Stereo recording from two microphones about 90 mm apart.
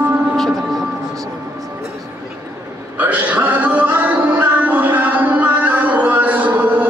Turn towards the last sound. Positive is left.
turn(degrees=-20)  # may be behind; listen again after turning